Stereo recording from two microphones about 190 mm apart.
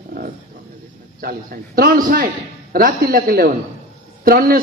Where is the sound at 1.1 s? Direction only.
50° right (ahead or behind).